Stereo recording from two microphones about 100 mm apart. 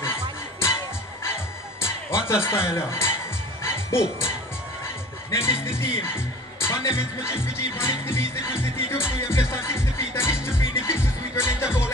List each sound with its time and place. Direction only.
0.0 s music: 25° left (ahead or behind)
5.3 s music: 25° left (ahead or behind)